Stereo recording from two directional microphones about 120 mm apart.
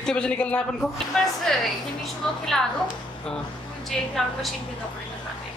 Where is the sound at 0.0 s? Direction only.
5° left (ahead or behind).